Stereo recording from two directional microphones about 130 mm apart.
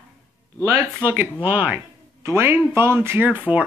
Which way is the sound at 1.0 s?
15° right (ahead or behind).